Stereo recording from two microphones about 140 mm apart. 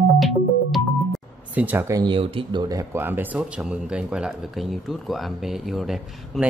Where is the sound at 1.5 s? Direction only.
15° right (ahead or behind).